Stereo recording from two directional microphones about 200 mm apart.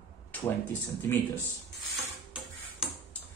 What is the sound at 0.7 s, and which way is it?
Speech, 10° left (ahead or behind).